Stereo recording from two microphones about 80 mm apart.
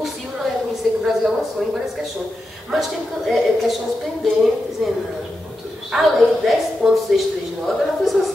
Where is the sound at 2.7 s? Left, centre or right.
Centre.